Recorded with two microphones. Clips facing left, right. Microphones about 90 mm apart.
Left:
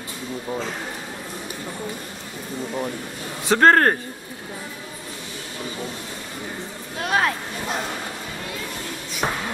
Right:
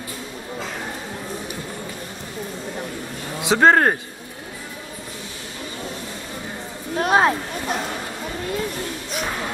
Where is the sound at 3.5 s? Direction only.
5° right (ahead or behind).